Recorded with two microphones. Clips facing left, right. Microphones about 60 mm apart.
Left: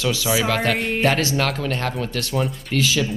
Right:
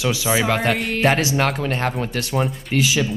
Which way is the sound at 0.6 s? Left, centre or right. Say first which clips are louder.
Right 1 dB; centre.